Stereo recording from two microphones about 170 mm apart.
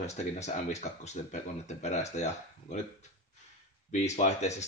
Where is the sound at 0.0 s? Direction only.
40° left (ahead or behind).